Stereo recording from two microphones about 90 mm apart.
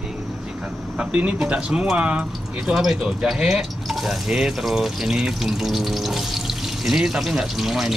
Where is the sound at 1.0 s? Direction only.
10° right (ahead or behind).